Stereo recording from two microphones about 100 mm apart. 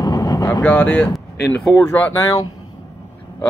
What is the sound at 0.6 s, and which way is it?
Speech, 15° left (ahead or behind).